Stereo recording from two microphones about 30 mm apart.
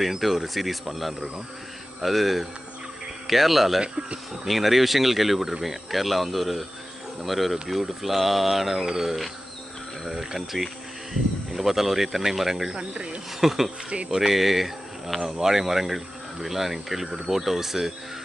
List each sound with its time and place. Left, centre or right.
0.2 s speech: centre
3.8 s speech: right
4.5 s speech: centre
12.7 s speech: right
13.4 s speech: centre